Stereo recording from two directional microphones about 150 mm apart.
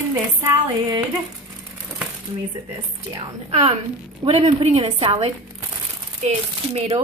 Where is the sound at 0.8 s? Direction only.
25° right (ahead or behind).